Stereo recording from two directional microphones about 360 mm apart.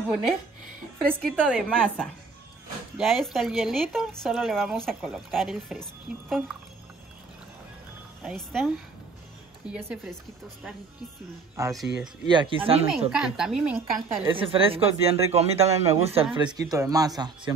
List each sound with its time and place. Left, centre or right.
1.0 s speech: centre
8.2 s speech: centre
11.5 s speech: centre
12.9 s speech: centre
14.3 s speech: centre